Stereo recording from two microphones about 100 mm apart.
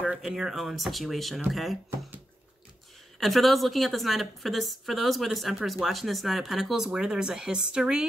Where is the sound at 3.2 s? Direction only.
Centre (ahead or behind).